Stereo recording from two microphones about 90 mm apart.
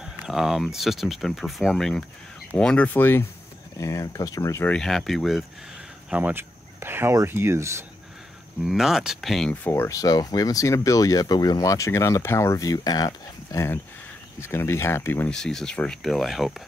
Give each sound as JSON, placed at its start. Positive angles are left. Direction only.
{"t": 0.0, "sound": "a sound", "side_deg": -10}
{"t": 0.7, "sound": "speech", "side_deg": -5}
{"t": 2.9, "sound": "speech", "side_deg": 25}
{"t": 3.7, "sound": "speech", "side_deg": 35}
{"t": 4.6, "sound": "speech", "side_deg": 5}
{"t": 6.0, "sound": "speech", "side_deg": -15}
{"t": 8.6, "sound": "speech", "side_deg": -5}
{"t": 9.7, "sound": "speech", "side_deg": 30}
{"t": 14.4, "sound": "speech", "side_deg": 30}
{"t": 15.2, "sound": "speech", "side_deg": 5}